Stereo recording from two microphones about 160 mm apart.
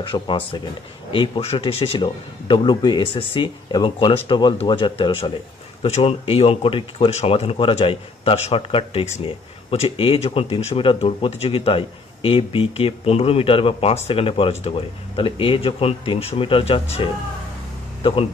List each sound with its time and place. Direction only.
0.0 s speech: 30° left (ahead or behind)